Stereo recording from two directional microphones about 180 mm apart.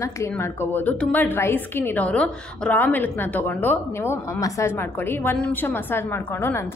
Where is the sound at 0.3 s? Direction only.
10° left (ahead or behind).